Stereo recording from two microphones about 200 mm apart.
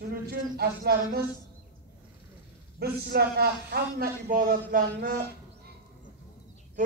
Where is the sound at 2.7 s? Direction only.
55° right (ahead or behind).